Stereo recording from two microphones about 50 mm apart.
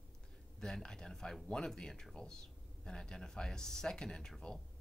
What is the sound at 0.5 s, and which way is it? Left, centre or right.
Speech, centre.